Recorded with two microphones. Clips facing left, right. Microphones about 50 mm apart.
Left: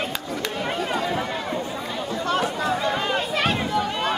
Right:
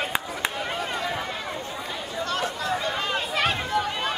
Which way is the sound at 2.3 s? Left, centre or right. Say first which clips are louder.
Left 4 dB; centre.